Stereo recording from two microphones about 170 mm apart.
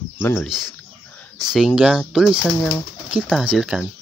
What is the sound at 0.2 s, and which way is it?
Speech, 15° left (ahead or behind).